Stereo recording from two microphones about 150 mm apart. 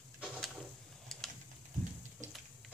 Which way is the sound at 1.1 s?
Centre (ahead or behind).